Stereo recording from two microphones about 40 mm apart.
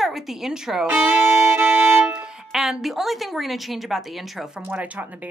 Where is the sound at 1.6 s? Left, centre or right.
Right.